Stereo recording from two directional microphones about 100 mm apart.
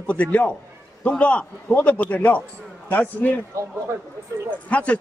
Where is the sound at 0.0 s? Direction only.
15° left (ahead or behind).